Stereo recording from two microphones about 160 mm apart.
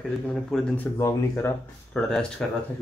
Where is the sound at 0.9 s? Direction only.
20° left (ahead or behind).